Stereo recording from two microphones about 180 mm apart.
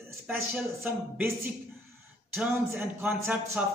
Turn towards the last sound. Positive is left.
turn(degrees=-10)  # may be behind; listen again after turning